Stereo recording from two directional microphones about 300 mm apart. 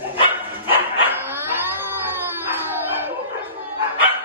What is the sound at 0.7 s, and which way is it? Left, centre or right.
Dog, centre.